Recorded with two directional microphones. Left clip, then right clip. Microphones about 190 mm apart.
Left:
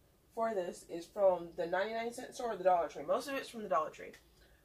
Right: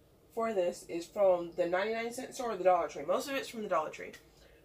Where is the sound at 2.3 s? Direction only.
15° right (ahead or behind).